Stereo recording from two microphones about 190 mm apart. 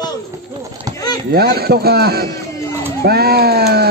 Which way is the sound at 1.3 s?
55° right (ahead or behind).